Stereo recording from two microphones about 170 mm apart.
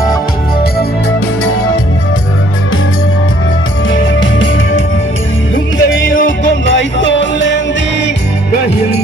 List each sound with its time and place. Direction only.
5.8 s music: 90° left